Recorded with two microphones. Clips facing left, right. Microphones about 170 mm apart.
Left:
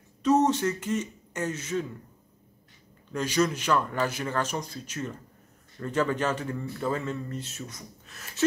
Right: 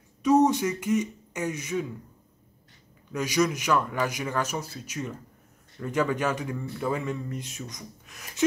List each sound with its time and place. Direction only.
0.2 s speech: 10° right (ahead or behind)
3.1 s speech: 10° right (ahead or behind)